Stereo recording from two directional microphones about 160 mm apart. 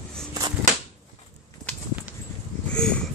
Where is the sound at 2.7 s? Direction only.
5° left (ahead or behind).